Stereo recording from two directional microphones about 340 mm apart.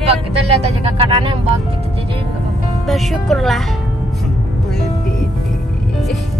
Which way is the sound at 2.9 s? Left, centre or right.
Centre.